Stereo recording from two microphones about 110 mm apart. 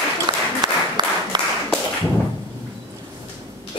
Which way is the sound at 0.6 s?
40° right (ahead or behind).